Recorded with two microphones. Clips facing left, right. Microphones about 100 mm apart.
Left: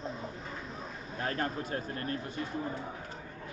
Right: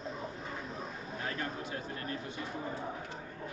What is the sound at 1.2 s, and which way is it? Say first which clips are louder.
Speech: left 5 dB; 45° left (ahead or behind).